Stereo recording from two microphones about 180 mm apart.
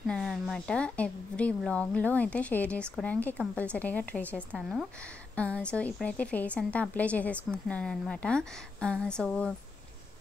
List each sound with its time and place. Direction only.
0.0 s speech: centre (ahead or behind)